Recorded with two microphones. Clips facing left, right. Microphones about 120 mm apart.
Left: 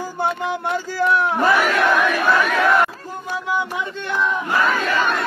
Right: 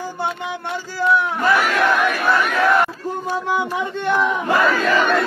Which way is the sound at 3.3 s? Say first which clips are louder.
Right 1 dB; 55° right (ahead or behind).